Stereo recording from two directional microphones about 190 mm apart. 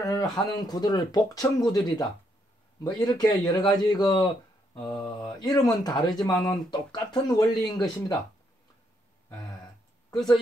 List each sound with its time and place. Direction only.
0.0 s a man's voice: 15° left (ahead or behind)